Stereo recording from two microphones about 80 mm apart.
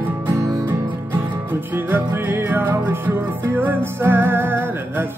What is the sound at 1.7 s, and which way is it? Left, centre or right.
Music, right.